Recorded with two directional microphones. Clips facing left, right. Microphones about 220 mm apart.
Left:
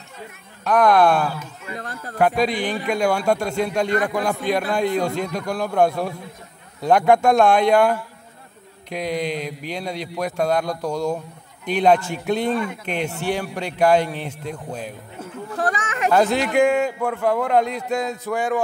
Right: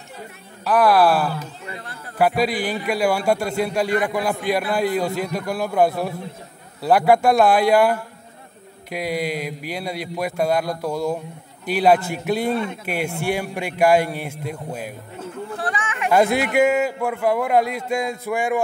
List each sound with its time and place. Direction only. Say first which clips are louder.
0.7 s speech: even; 5° right (ahead or behind)
1.8 s speech: left 5 dB; 40° left (ahead or behind)
2.1 s a man's voice: even; 5° right (ahead or behind)
15.6 s a sound: left 5 dB; 40° left (ahead or behind)
16.1 s a man's voice: right 1 dB; 10° right (ahead or behind)